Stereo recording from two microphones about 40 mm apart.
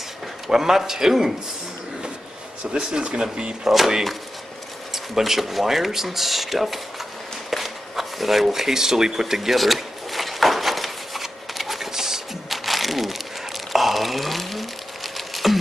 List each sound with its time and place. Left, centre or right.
0.5 s a man's voice: centre
2.6 s speech: centre
3.7 s speech: centre
7.5 s a sound: centre
13.7 s pour: centre
15.1 s a sound: centre